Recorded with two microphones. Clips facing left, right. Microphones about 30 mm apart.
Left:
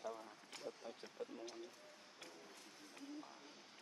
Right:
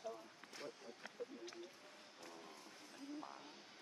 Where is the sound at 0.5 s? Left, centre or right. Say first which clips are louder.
Left 1 dB; left.